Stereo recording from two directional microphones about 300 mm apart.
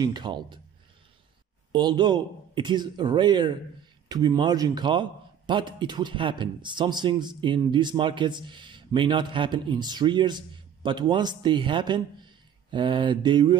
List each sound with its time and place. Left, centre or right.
0.0 s speech: centre
1.7 s speech: centre